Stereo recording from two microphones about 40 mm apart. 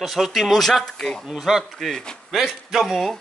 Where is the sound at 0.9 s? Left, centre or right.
Centre.